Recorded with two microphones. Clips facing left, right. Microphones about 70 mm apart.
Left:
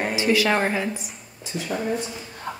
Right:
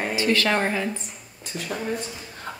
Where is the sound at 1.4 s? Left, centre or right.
Right.